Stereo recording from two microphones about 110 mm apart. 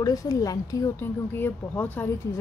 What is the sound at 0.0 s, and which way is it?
Speech, 35° left (ahead or behind).